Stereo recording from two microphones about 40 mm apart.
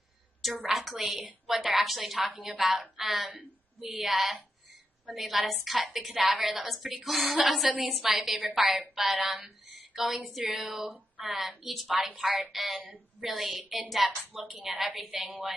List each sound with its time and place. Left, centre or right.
0.4 s a woman's voice: centre
3.3 s a woman's voice: right
4.1 s a woman's voice: centre
14.6 s a woman's voice: centre
15.0 s a woman's voice: right